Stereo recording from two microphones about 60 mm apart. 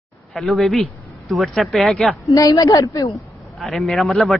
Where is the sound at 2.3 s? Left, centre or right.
Left.